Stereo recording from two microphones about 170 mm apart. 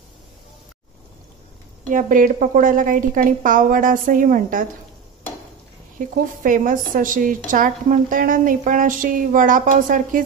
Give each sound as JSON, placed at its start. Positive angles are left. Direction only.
{"t": 1.9, "sound": "a woman's voice", "side_deg": -50}
{"t": 5.9, "sound": "a woman's voice", "side_deg": -50}